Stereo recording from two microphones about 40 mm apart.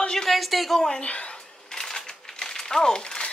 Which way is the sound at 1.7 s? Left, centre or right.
Centre.